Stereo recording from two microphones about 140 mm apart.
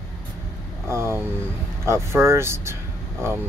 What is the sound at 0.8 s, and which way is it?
Speech, 20° right (ahead or behind).